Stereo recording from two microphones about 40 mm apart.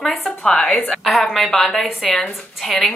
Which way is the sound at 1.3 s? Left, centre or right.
Centre.